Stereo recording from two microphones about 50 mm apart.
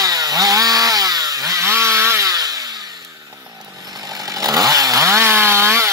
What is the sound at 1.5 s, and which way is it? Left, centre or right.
Chainsaw, right.